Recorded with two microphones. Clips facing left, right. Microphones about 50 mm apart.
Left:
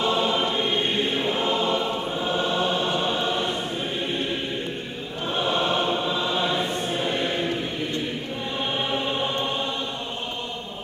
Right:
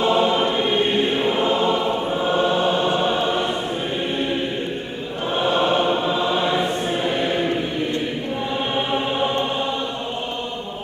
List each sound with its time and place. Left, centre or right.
0.0 s choir: centre
5.3 s choir: centre
8.7 s choir: centre